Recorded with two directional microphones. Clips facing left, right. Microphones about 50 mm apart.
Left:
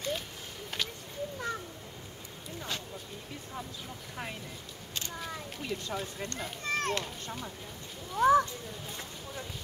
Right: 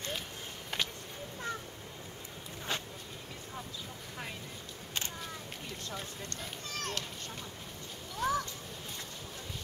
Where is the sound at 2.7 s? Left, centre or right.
Right.